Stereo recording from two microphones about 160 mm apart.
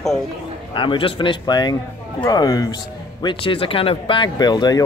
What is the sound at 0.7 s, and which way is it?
Speech, 30° left (ahead or behind).